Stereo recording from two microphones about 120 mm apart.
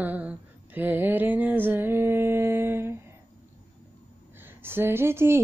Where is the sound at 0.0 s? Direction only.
15° right (ahead or behind).